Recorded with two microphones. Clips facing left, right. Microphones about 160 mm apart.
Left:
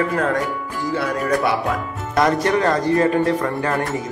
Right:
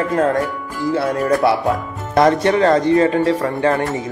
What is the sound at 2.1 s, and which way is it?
Speech, 25° right (ahead or behind).